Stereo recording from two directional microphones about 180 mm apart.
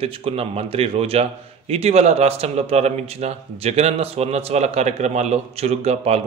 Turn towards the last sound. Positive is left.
turn(degrees=-35)  # may be behind; listen again after turning